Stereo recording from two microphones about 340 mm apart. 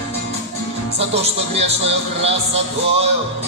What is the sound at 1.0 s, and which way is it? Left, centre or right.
Speech, centre.